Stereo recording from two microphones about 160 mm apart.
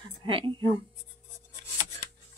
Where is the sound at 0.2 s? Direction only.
35° right (ahead or behind).